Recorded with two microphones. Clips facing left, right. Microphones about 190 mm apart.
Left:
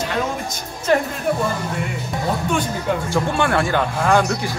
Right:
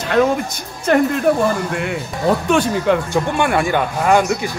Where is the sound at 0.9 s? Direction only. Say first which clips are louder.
Right 3 dB; 55° right (ahead or behind).